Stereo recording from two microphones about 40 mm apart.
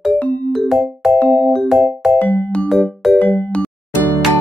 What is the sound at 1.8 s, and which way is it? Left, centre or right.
Music, centre.